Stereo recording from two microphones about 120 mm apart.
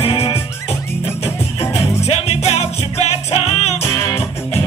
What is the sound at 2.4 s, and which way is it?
Music, 60° left (ahead or behind).